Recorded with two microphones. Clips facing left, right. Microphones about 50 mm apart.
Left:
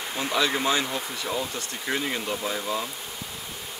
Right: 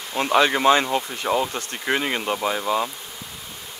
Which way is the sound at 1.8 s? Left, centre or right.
Right.